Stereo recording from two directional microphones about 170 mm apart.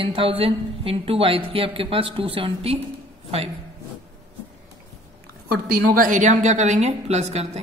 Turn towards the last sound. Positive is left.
turn(degrees=-40)  # may be behind; listen again after turning